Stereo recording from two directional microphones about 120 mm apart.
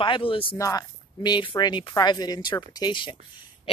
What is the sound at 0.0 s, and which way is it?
Speech, 45° left (ahead or behind).